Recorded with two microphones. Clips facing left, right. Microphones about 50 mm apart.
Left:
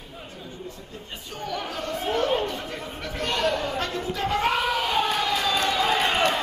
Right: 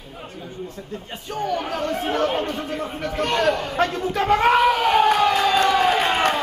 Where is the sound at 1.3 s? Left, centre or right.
Right.